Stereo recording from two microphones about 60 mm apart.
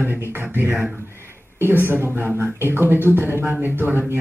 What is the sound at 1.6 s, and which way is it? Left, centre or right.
Speech, right.